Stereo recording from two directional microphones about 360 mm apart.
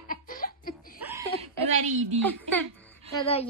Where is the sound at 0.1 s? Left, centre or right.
Left.